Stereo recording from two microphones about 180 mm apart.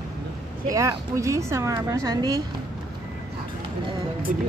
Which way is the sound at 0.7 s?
15° right (ahead or behind).